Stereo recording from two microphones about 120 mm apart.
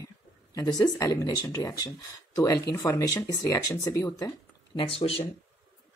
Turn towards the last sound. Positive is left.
turn(degrees=55)  # may be behind; listen again after turning